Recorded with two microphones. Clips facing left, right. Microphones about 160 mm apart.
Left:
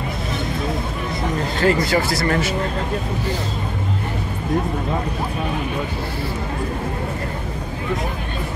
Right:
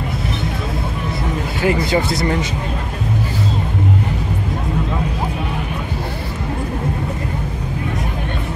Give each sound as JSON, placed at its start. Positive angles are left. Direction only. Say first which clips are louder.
{"t": 1.6, "sound": "speech", "louder": "right 1 dB", "side_deg": -15}